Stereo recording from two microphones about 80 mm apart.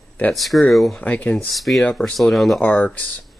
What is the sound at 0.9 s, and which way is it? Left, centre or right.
Speech, centre.